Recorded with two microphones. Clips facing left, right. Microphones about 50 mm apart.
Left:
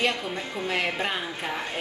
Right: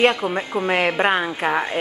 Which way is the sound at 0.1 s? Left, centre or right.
Right.